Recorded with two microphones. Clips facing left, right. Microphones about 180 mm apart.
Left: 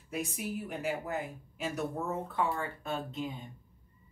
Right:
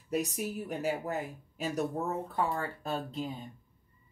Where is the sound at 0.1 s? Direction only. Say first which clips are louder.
Right 3 dB; 40° right (ahead or behind).